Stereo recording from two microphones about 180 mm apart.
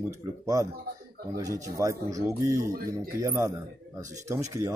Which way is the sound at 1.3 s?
20° right (ahead or behind).